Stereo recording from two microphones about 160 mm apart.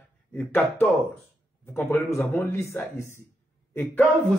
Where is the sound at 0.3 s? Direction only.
10° left (ahead or behind).